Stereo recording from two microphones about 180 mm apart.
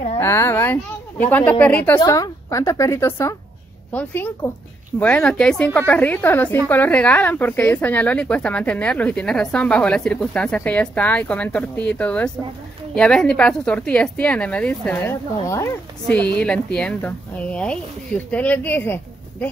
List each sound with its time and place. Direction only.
0.2 s speech: 15° left (ahead or behind)
2.0 s a woman's voice: 20° left (ahead or behind)